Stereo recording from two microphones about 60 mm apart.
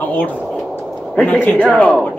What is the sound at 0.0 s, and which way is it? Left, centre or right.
Speech, left.